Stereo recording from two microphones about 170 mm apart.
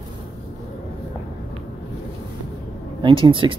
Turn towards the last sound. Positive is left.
turn(degrees=-30)  # may be behind; listen again after turning